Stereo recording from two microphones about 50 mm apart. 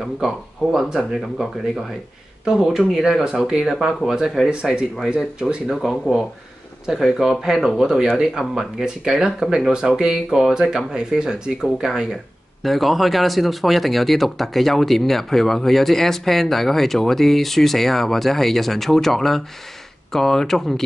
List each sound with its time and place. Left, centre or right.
0.0 s a man's voice: centre
2.4 s speech: centre
5.7 s a man's voice: centre
12.6 s a man's voice: centre